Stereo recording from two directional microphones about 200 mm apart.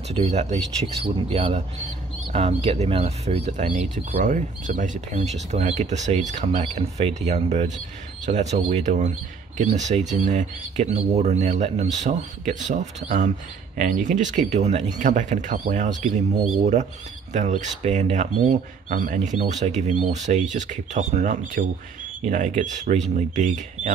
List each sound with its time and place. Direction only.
0.1 s speech: 35° right (ahead or behind)
17.3 s speech: 35° right (ahead or behind)